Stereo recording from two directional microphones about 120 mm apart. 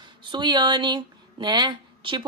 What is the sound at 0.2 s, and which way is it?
Speech, 40° right (ahead or behind).